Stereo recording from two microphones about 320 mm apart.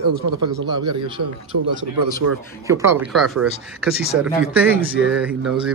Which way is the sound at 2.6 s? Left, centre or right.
Centre.